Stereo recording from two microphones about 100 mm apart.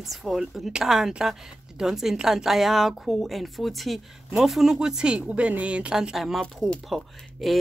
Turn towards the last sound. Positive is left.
turn(degrees=0)  # may be behind; listen again after turning